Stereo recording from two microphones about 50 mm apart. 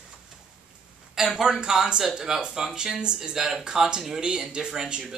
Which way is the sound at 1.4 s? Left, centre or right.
Centre.